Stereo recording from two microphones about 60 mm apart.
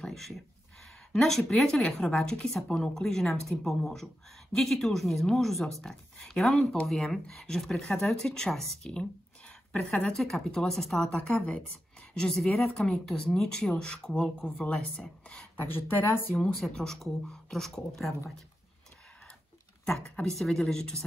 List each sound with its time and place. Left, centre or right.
0.0 s a sound: centre
1.1 s speech: centre
11.1 s speech: centre
15.6 s speech: left
16.5 s speech: centre
19.9 s speech: centre